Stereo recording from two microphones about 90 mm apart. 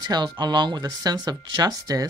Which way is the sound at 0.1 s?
60° right (ahead or behind).